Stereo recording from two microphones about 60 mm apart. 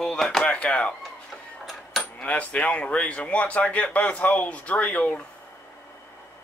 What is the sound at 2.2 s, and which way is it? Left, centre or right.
A man's voice, left.